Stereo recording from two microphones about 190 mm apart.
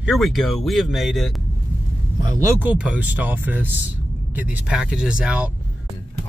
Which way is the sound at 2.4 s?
10° right (ahead or behind).